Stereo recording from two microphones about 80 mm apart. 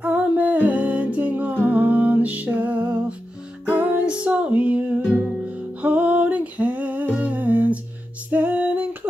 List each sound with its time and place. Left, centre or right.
0.0 s humming: centre
3.6 s music: centre
5.8 s humming: centre
8.3 s music: right